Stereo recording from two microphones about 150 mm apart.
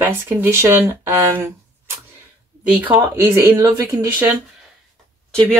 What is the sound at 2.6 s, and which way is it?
Speech, 10° right (ahead or behind).